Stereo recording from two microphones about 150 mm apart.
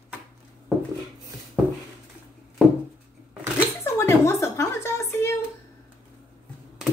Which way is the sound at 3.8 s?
20° left (ahead or behind).